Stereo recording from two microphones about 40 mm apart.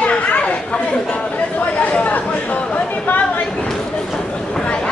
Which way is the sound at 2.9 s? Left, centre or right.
Left.